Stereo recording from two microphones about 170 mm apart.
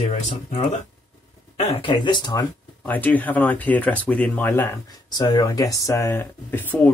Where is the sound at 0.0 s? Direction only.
40° left (ahead or behind).